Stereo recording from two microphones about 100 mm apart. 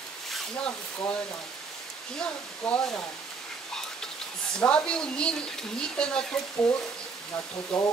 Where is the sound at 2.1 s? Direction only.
10° left (ahead or behind).